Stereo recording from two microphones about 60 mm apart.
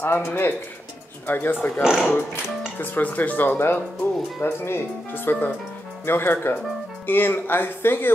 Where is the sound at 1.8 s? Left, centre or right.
Centre.